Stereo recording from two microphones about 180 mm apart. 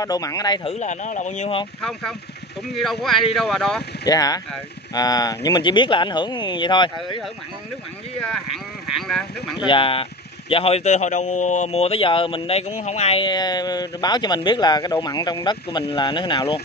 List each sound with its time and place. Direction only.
0.0 s a man's voice: 20° left (ahead or behind)
0.7 s speech: 40° left (ahead or behind)
1.8 s speech: centre (ahead or behind)
4.1 s a man's voice: 20° left (ahead or behind)
8.8 s speech: centre (ahead or behind)
9.7 s a man's voice: 30° left (ahead or behind)